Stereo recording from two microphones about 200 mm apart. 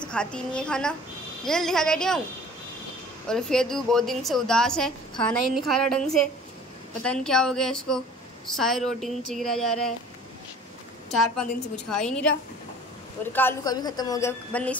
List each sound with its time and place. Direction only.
0.1 s a woman's voice: 5° left (ahead or behind)
3.3 s a woman's voice: 5° left (ahead or behind)
11.1 s a woman's voice: 5° left (ahead or behind)
13.2 s a woman's voice: 10° left (ahead or behind)
14.5 s a woman's voice: 5° left (ahead or behind)